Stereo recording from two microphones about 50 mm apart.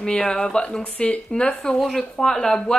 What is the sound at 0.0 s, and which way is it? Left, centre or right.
Speech, centre.